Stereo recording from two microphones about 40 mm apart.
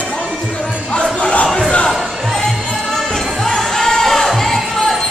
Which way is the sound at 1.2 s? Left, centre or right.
Left.